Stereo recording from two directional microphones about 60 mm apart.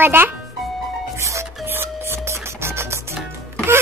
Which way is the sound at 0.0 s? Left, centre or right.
Right.